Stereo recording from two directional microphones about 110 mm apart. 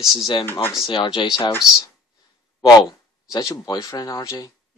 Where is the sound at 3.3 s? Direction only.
30° left (ahead or behind).